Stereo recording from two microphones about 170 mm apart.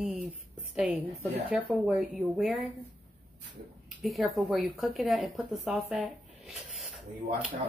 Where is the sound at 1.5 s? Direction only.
5° right (ahead or behind).